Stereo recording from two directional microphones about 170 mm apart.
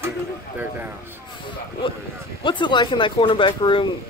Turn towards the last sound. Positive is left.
turn(degrees=30)  # may be behind; listen again after turning